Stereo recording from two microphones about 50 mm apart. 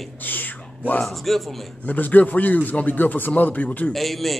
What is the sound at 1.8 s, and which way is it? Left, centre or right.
A man's voice, left.